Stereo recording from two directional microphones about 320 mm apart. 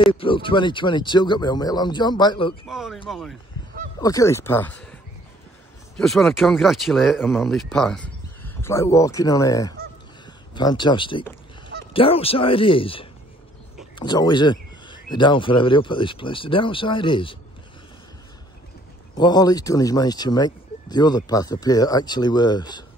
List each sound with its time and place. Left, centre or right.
0.0 s speech: centre
2.6 s speech: centre
5.9 s speech: centre
19.1 s speech: centre